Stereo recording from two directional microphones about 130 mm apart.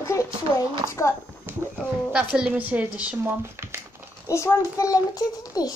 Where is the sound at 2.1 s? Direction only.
10° right (ahead or behind).